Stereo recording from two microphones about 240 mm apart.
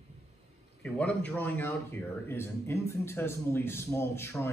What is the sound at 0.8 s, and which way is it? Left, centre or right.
A man's voice, centre.